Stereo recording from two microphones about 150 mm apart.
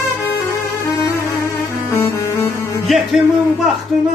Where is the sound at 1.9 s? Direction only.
15° left (ahead or behind).